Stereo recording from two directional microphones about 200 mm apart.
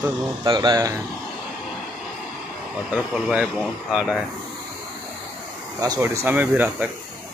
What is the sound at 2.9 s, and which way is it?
Speech, 5° right (ahead or behind).